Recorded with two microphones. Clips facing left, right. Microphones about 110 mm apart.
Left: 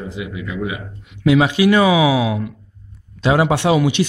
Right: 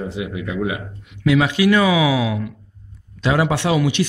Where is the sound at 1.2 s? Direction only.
20° left (ahead or behind).